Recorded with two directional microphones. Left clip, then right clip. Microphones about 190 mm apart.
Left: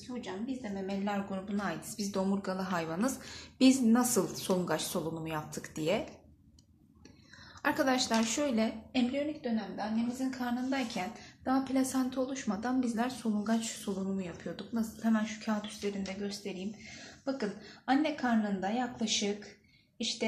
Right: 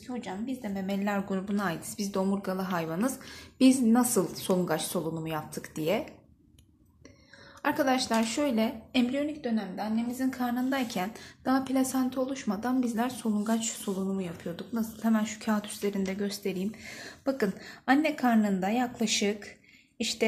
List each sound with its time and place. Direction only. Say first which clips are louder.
0.2 s a woman's voice: right 1 dB; 60° right (ahead or behind)
2.0 s a woman's voice: right 2 dB; 30° right (ahead or behind)
7.6 s a woman's voice: right 3 dB; 25° right (ahead or behind)
10.1 s a woman's voice: right 5 dB; 55° right (ahead or behind)